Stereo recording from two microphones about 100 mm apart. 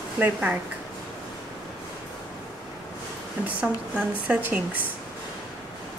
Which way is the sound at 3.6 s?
15° right (ahead or behind).